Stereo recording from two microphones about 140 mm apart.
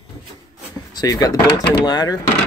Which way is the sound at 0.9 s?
25° left (ahead or behind).